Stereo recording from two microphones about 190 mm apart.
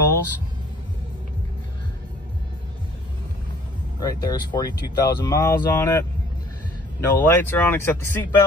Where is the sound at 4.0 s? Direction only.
20° left (ahead or behind).